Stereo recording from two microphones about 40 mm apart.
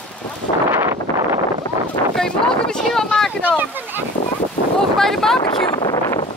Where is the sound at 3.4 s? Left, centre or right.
Right.